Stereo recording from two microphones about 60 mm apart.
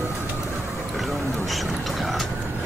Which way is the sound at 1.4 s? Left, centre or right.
Centre.